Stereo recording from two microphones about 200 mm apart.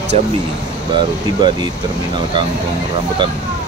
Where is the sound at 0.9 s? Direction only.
20° right (ahead or behind).